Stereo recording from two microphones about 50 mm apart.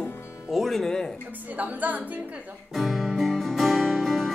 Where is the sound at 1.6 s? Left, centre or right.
Right.